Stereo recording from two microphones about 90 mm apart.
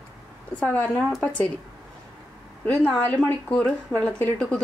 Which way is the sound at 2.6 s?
15° left (ahead or behind).